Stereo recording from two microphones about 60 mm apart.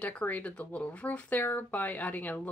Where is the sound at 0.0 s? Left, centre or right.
Left.